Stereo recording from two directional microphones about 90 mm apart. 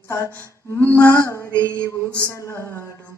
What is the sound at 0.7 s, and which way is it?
Mantra, 25° left (ahead or behind).